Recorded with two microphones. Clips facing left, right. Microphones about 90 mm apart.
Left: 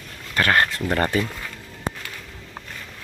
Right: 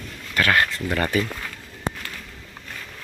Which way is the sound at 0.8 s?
35° left (ahead or behind).